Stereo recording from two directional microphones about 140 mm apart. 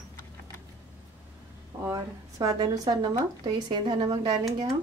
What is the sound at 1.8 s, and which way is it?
Speech, 25° right (ahead or behind).